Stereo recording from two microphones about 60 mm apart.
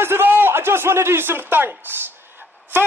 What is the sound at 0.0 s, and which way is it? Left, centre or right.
A man's voice, right.